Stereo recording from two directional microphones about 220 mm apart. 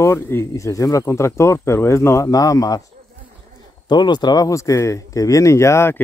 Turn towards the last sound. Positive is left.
turn(degrees=10)  # may be behind; listen again after turning